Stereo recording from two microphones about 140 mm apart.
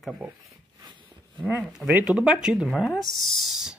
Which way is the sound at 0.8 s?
30° right (ahead or behind).